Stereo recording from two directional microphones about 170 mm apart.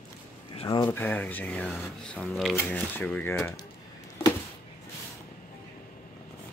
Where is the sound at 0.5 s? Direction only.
30° left (ahead or behind).